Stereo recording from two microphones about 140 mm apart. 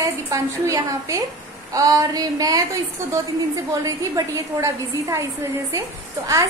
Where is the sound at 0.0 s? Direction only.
20° right (ahead or behind).